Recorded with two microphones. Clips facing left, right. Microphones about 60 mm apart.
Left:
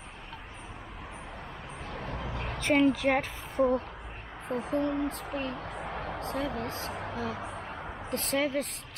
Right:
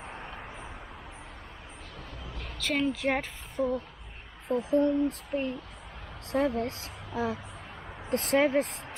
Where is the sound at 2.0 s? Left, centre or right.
Left.